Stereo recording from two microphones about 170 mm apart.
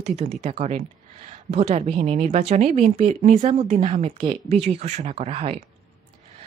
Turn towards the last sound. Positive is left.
turn(degrees=-35)  # may be behind; listen again after turning